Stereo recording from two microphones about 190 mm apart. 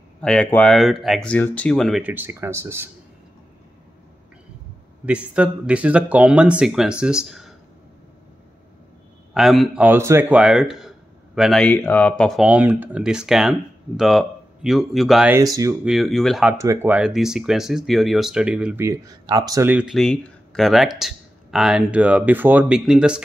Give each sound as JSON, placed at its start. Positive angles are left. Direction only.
{"t": 0.2, "sound": "speech", "side_deg": 5}
{"t": 5.0, "sound": "speech", "side_deg": -5}
{"t": 7.2, "sound": "a sound", "side_deg": 0}
{"t": 9.3, "sound": "speech", "side_deg": 0}
{"t": 15.3, "sound": "speech", "side_deg": -15}
{"t": 15.8, "sound": "speech", "side_deg": 0}
{"t": 16.5, "sound": "speech", "side_deg": -15}